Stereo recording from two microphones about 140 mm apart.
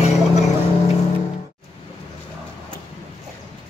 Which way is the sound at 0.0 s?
50° left (ahead or behind).